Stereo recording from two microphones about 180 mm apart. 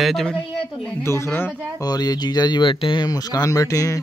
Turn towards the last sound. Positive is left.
turn(degrees=20)  # may be behind; listen again after turning